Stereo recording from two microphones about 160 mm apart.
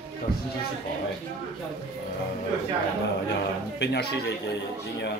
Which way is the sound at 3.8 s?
90° left.